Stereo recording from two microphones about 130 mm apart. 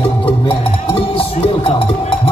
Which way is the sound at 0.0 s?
45° left (ahead or behind).